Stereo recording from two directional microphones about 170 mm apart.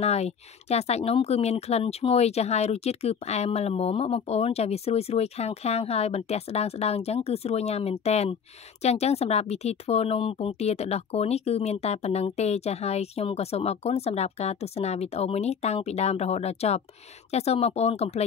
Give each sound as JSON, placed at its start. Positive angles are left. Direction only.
{"t": 0.0, "sound": "speech", "side_deg": 40}